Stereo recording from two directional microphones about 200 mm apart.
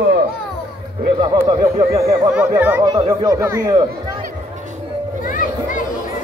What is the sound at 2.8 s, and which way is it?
Speech, 20° right (ahead or behind).